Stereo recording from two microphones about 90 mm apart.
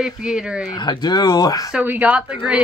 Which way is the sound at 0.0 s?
10° right (ahead or behind).